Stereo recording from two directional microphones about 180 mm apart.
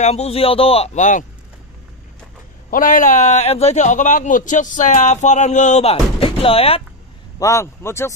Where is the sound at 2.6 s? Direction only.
50° left (ahead or behind); by 6.8 s 30° left (ahead or behind).